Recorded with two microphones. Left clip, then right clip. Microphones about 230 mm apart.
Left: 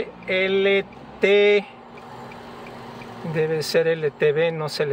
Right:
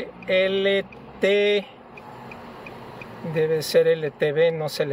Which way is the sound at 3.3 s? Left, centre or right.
Centre.